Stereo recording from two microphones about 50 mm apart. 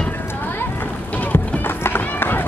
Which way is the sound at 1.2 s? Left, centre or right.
Left.